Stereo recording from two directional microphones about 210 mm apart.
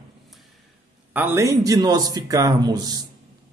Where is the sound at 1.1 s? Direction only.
10° right (ahead or behind).